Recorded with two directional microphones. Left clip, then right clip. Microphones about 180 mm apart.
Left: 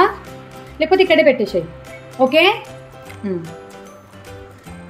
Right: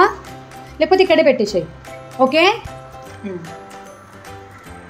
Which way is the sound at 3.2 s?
40° left (ahead or behind).